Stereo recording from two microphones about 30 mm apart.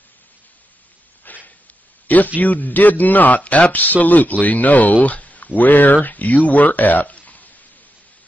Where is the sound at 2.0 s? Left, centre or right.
Left.